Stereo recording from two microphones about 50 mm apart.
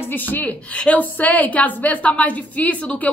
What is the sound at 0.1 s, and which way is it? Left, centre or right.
Speech, left.